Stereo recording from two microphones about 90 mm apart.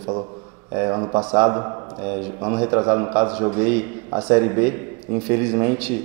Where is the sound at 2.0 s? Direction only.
15° right (ahead or behind).